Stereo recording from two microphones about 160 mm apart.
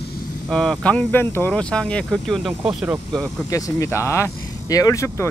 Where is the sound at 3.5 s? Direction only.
20° left (ahead or behind).